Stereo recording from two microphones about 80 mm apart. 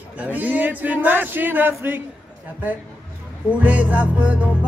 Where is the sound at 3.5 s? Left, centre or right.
Centre.